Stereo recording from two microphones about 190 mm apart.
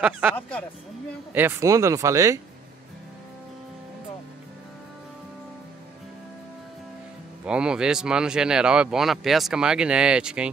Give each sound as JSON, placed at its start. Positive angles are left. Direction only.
{"t": 0.0, "sound": "speech", "side_deg": -10}
{"t": 0.4, "sound": "speech", "side_deg": 10}
{"t": 1.3, "sound": "speech", "side_deg": -10}
{"t": 7.4, "sound": "speech", "side_deg": -5}